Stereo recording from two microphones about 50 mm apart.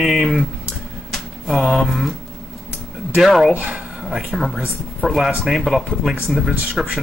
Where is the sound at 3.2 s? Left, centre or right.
Centre.